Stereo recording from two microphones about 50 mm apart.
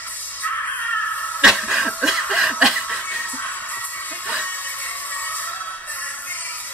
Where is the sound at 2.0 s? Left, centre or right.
Centre.